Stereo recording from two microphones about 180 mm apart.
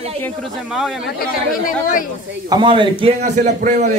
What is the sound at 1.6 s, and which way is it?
Speech, 50° left (ahead or behind).